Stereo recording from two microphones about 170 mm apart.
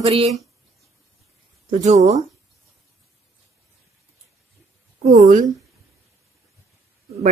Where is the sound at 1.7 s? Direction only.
45° right (ahead or behind).